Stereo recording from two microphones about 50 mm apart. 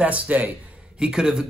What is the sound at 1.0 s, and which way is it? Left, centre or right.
Speech, centre.